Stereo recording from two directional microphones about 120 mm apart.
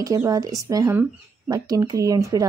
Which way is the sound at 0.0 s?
30° right (ahead or behind).